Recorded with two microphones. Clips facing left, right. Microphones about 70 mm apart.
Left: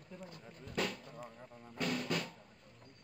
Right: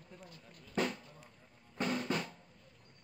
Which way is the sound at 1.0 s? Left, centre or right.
Left.